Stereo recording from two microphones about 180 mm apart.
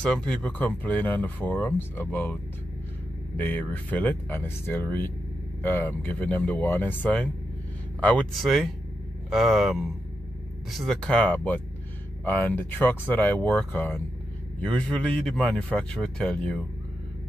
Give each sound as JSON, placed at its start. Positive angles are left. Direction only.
{"t": 0.0, "sound": "speech", "side_deg": 5}
{"t": 3.3, "sound": "speech", "side_deg": 10}